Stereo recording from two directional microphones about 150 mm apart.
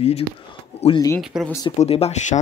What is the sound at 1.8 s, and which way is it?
Speech, 45° left (ahead or behind).